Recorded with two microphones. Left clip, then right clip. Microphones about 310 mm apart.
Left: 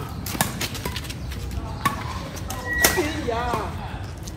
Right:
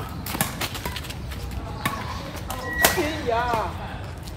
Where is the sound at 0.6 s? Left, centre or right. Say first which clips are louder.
Even; centre.